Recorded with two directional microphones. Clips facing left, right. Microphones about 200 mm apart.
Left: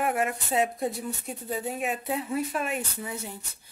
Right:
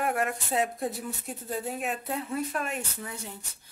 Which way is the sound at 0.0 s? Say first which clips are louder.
Left 1 dB; centre (ahead or behind).